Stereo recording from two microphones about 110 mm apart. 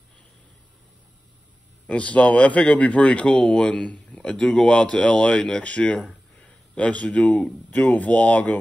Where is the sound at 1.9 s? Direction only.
10° left (ahead or behind).